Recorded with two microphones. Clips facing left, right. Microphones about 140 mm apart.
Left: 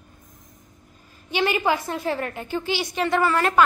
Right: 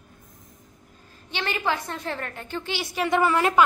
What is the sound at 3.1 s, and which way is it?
Speech, 15° right (ahead or behind).